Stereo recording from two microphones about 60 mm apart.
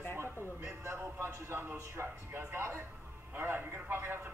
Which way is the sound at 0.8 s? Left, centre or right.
Right.